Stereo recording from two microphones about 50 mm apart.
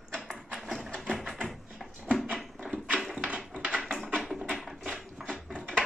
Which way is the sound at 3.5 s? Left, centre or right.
Centre.